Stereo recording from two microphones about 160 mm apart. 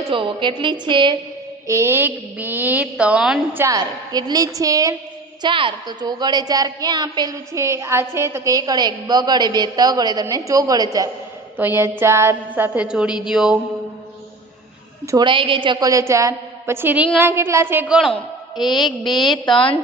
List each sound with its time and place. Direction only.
0.1 s a woman's voice: 30° right (ahead or behind)
1.7 s a woman's voice: 15° right (ahead or behind)
3.6 s a woman's voice: 25° right (ahead or behind); by 13.6 s 5° right (ahead or behind)
15.0 s a woman's voice: 25° right (ahead or behind); by 18.1 s 5° right (ahead or behind)
19.3 s a woman's voice: 30° left (ahead or behind)